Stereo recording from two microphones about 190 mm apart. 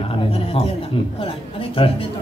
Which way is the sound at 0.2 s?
30° left (ahead or behind).